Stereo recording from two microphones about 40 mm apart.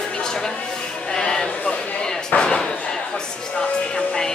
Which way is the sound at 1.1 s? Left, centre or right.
Centre.